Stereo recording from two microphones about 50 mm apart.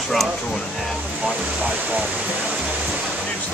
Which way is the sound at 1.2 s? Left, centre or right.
Right.